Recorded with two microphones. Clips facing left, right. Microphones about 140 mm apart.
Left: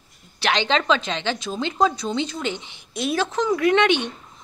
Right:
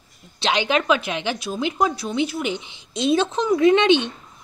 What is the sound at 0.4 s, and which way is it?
Speech, 15° right (ahead or behind).